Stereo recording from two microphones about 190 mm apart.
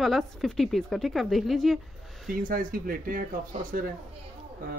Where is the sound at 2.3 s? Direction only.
45° right (ahead or behind).